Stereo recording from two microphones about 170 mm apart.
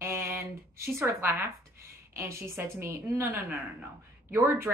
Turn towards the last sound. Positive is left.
turn(degrees=-15)  # may be behind; listen again after turning